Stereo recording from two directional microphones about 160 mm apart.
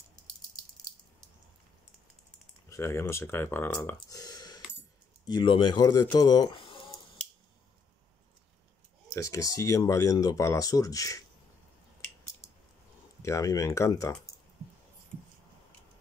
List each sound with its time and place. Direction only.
2.7 s speech: 15° left (ahead or behind); by 6.8 s 35° left (ahead or behind)
9.1 s speech: 20° left (ahead or behind)
13.2 s speech: 20° left (ahead or behind)